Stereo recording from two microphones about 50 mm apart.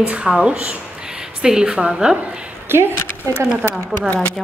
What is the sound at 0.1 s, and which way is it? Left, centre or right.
Speech, right.